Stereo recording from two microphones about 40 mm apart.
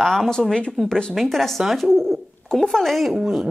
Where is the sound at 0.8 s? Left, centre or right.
Centre.